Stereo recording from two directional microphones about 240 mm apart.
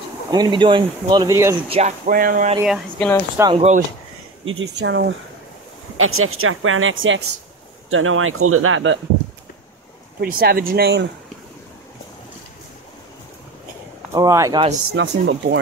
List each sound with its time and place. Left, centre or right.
0.3 s speech: centre
1.7 s a sound: right
2.6 s speech: centre
3.3 s speech: centre
4.5 s speech: right
5.9 s speech: right
10.2 s speech: right
14.1 s speech: centre
15.0 s speech: right